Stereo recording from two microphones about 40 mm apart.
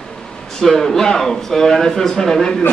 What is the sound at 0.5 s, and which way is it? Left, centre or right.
A man's voice, centre.